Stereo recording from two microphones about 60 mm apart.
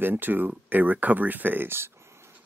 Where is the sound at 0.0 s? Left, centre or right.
Right.